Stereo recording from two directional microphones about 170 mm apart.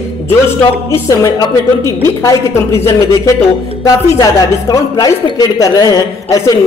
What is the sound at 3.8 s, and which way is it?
Speech, 20° left (ahead or behind).